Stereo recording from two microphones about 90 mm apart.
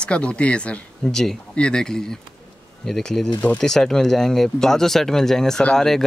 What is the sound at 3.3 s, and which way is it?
Speech, 15° left (ahead or behind).